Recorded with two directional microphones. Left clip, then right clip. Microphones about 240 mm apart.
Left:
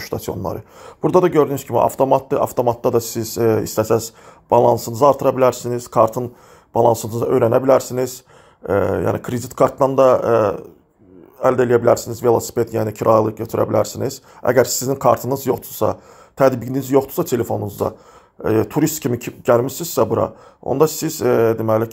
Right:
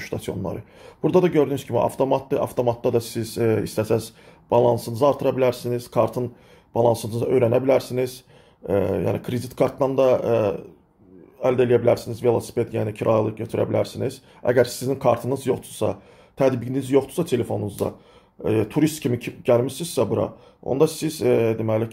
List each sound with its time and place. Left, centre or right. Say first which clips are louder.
0.0 s speech: left 5 dB; centre